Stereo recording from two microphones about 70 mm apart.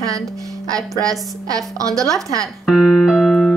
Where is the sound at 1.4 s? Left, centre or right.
Right.